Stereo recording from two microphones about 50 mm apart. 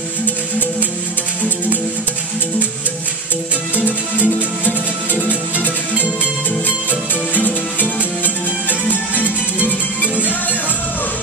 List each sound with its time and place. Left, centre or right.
3.7 s music: left
6.9 s music: left